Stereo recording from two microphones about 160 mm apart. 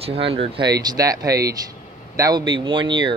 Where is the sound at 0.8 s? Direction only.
20° right (ahead or behind).